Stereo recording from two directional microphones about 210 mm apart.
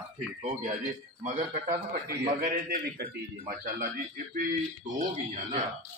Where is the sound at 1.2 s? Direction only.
45° right (ahead or behind).